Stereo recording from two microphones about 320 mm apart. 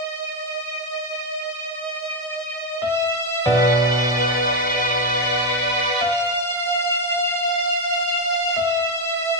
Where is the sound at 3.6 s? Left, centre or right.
Left.